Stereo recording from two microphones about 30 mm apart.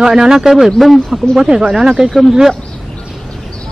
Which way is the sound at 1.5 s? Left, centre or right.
Right.